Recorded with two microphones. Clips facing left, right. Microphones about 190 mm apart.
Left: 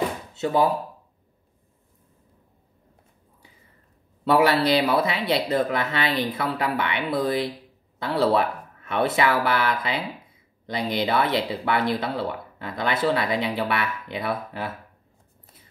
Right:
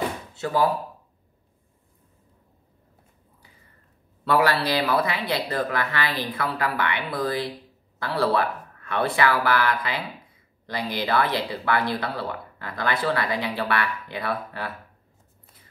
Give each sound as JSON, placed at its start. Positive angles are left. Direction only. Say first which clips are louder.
{"t": 0.4, "sound": "speech", "louder": "left 2 dB", "side_deg": 20}
{"t": 4.2, "sound": "speech", "louder": "left 3 dB", "side_deg": 20}